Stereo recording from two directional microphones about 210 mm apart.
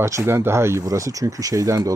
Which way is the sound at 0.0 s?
15° right (ahead or behind).